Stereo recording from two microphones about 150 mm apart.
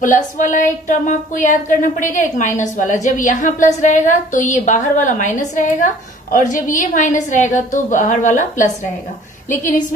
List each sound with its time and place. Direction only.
0.0 s speech: 60° left (ahead or behind)